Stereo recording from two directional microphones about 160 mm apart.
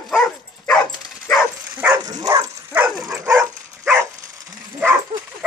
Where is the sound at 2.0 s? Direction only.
25° right (ahead or behind).